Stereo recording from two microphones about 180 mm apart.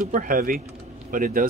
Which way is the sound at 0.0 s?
50° right (ahead or behind).